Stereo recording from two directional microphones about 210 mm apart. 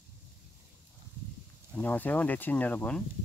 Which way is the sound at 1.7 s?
10° left (ahead or behind).